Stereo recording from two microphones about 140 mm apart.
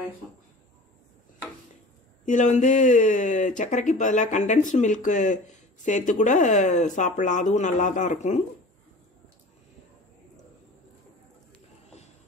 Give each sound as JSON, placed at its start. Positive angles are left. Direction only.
{"t": 2.2, "sound": "speech", "side_deg": 60}